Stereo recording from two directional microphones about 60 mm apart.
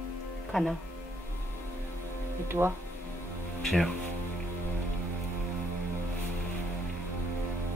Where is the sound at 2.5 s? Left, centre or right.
Right.